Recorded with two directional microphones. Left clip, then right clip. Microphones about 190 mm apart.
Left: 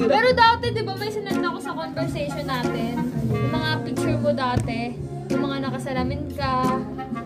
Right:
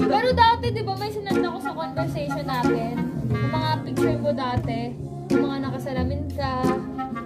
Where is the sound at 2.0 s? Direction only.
Centre (ahead or behind).